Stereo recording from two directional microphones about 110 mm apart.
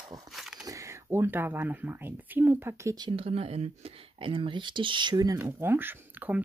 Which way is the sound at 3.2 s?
65° right (ahead or behind).